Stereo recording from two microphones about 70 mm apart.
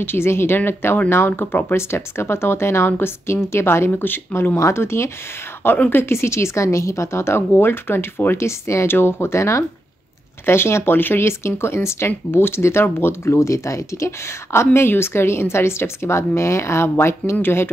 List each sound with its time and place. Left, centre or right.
0.0 s speech: left